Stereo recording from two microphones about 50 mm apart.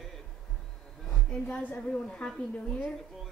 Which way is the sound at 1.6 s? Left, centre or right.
Left.